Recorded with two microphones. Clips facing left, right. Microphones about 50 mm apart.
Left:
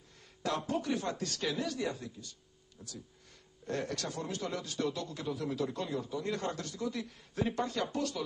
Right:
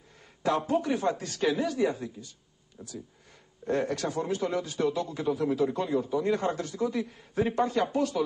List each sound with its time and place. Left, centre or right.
0.4 s a man's voice: centre